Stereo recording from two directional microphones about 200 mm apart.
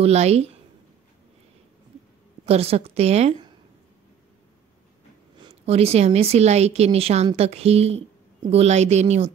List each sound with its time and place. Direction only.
0.0 s a woman's voice: 30° right (ahead or behind)
2.4 s a woman's voice: 30° right (ahead or behind)
5.4 s a woman's voice: 30° right (ahead or behind)